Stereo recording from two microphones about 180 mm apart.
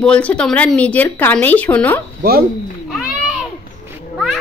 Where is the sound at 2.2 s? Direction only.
55° right (ahead or behind).